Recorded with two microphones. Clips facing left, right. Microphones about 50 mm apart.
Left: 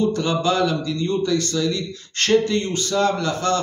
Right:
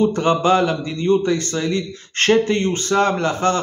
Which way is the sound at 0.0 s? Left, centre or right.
Right.